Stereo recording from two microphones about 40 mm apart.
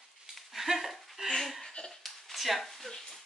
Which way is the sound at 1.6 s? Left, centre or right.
Centre.